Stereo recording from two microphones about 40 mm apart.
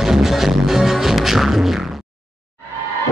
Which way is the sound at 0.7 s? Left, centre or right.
Centre.